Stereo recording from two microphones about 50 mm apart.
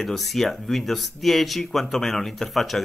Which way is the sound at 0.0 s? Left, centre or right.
Centre.